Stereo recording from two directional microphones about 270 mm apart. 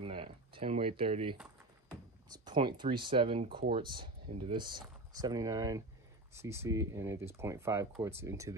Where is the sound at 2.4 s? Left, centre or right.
Centre.